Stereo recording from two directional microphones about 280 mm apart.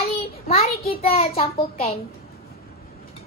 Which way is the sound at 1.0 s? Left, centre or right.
Left.